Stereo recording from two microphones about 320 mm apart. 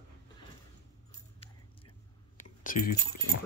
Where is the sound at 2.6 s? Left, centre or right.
Left.